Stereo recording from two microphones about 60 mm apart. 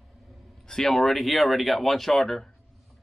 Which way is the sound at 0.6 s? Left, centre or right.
Centre.